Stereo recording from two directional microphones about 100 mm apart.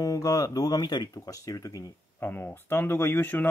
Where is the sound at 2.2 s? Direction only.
20° left (ahead or behind).